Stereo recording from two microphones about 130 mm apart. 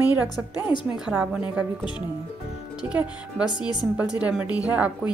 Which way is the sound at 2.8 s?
5° right (ahead or behind).